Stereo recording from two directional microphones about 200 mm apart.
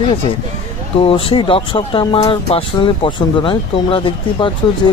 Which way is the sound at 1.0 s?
25° left (ahead or behind).